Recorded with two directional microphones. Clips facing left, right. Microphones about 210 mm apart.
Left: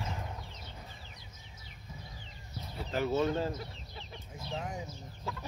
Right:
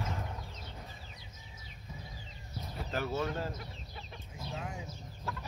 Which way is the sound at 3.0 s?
20° left (ahead or behind).